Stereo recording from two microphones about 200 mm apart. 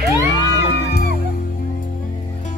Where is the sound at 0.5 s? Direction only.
55° left (ahead or behind).